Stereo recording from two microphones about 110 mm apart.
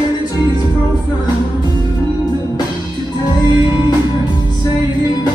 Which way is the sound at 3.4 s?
45° left (ahead or behind).